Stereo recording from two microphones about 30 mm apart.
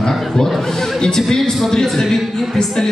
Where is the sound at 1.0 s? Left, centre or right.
Centre.